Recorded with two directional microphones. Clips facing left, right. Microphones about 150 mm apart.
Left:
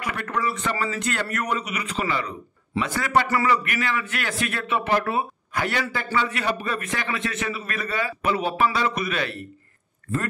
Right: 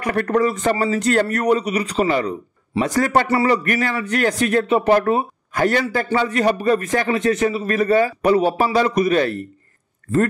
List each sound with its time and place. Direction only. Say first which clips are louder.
0.0 s a man's voice: right 9 dB; 45° right (ahead or behind)